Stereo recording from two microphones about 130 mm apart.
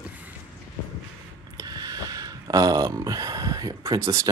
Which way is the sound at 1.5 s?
30° right (ahead or behind).